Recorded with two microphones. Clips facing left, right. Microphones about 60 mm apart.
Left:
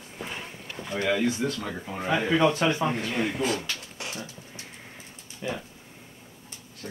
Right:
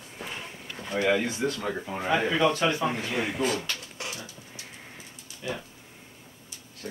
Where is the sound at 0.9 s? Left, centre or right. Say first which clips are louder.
Even; centre.